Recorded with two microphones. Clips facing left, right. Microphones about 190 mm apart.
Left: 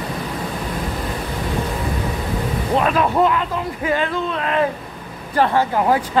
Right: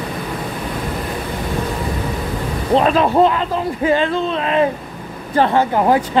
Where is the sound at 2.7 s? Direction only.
30° right (ahead or behind).